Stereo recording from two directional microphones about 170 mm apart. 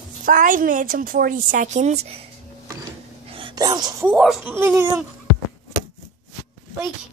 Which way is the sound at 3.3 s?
30° right (ahead or behind).